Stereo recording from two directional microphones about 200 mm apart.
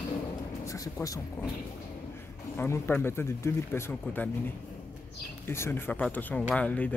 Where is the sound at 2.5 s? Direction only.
10° left (ahead or behind).